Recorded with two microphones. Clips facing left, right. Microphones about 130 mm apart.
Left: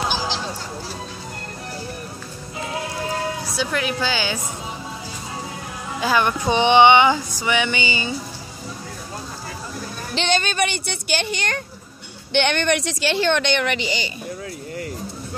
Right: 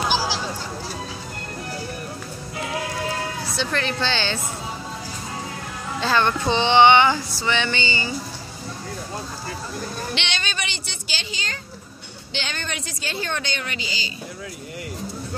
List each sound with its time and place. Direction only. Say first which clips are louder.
3.4 s female singing: left 1 dB; 10° left (ahead or behind)
5.9 s female singing: left 1 dB; 10° left (ahead or behind)
10.1 s speech: left 8 dB; 45° left (ahead or behind); by 13.7 s 70° left (ahead or behind)